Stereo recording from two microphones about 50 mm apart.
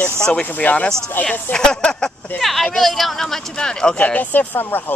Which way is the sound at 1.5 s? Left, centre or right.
Centre.